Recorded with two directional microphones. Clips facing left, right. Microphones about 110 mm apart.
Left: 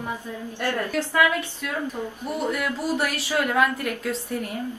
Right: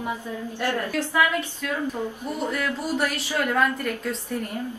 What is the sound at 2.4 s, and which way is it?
Speech, 15° left (ahead or behind).